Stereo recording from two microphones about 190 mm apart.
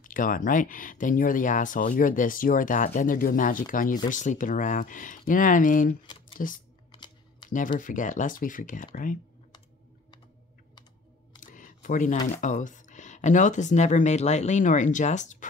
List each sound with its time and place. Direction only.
0.0 s speech: 45° left (ahead or behind)
6.9 s a sound: 25° left (ahead or behind)
7.4 s speech: 45° left (ahead or behind)
11.5 s camera: 45° left (ahead or behind)
12.3 s speech: 40° left (ahead or behind)